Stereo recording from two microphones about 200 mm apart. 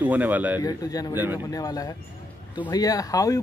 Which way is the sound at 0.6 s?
20° left (ahead or behind).